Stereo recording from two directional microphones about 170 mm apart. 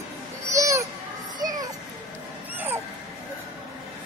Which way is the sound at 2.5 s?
10° right (ahead or behind).